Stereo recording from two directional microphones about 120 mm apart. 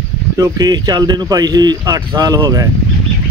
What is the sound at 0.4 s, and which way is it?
Speech, 35° right (ahead or behind).